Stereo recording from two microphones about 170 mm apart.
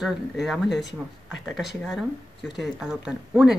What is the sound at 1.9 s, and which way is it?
Speech, centre (ahead or behind).